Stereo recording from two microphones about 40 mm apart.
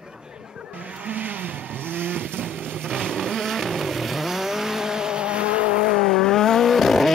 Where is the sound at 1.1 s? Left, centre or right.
Right.